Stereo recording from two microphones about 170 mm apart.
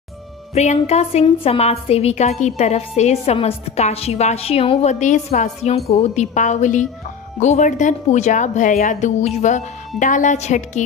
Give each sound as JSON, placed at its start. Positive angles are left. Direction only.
{"t": 0.6, "sound": "a woman's voice", "side_deg": 40}